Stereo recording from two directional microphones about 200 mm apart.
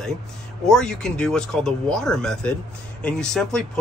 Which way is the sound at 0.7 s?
5° left (ahead or behind).